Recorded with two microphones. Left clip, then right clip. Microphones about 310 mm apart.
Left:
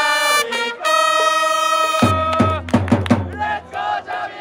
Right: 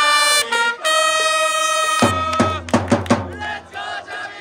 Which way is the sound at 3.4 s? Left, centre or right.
Centre.